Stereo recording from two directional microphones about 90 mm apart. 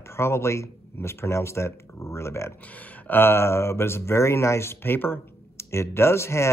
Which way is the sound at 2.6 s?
15° left (ahead or behind).